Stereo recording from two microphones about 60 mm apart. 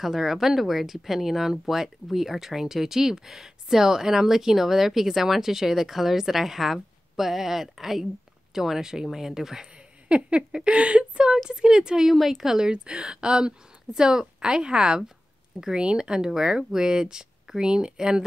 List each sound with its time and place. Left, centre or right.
0.0 s speech: centre
10.0 s speech: centre